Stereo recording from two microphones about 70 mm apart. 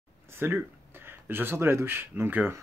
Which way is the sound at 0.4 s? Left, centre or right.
Right.